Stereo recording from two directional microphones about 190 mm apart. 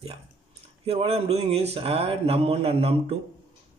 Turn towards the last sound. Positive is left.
turn(degrees=-30)  # may be behind; listen again after turning